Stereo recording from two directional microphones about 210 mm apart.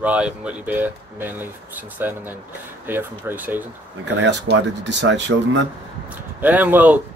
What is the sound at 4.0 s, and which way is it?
Speech, 55° right (ahead or behind).